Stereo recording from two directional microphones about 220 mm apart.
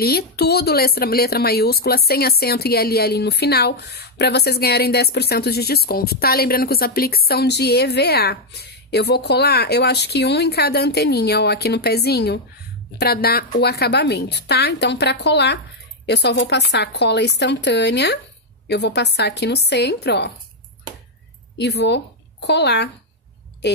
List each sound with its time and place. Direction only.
0.0 s speech: 45° left (ahead or behind)
21.5 s a woman's voice: 50° left (ahead or behind)